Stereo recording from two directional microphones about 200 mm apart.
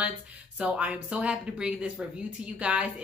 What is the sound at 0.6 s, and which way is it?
Speech, 5° right (ahead or behind).